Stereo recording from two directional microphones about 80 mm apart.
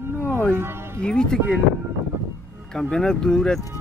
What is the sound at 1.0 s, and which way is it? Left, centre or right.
Speech, centre.